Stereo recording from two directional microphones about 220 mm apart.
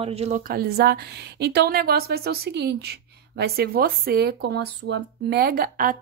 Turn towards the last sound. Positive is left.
turn(degrees=-40)  # may be behind; listen again after turning